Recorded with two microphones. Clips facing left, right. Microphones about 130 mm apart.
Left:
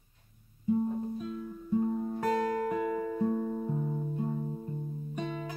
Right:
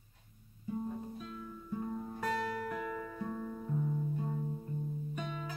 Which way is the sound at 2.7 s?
15° left (ahead or behind).